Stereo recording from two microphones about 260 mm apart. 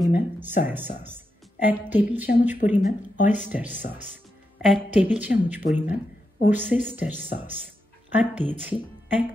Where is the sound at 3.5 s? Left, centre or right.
Centre.